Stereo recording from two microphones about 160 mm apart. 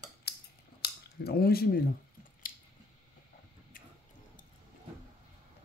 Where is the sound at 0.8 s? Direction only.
80° left.